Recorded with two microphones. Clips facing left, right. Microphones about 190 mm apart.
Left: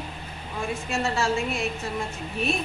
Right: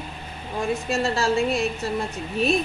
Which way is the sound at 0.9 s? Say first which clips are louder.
Right 2 dB; 35° right (ahead or behind).